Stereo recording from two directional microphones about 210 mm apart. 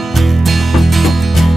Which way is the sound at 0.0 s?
Centre (ahead or behind).